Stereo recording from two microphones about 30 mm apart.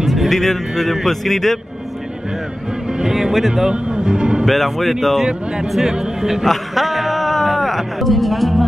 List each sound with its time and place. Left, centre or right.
0.0 s music: centre
0.3 s a man's voice: centre
3.0 s speech: centre
3.7 s speech: right
4.5 s a man's voice: centre
5.7 s speech: centre
6.7 s music: centre